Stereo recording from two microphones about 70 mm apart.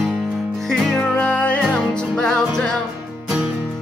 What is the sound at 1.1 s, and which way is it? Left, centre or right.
Music, centre.